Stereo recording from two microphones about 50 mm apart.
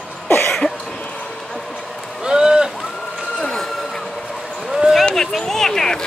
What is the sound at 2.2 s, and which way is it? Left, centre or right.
Boat, centre.